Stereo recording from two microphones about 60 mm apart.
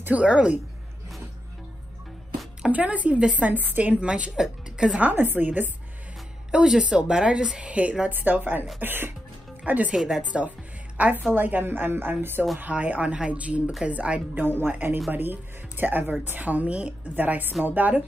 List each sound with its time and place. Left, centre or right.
0.2 s a woman's voice: centre
2.7 s a woman's voice: right
5.1 s a woman's voice: right
6.5 s a woman's voice: centre
8.1 s a woman's voice: right
9.9 s a woman's voice: centre
11.0 s a woman's voice: right
14.3 s a woman's voice: right
17.1 s a woman's voice: right